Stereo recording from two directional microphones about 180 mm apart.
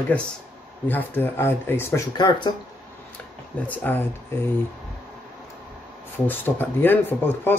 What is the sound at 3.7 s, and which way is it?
Speech, 10° left (ahead or behind).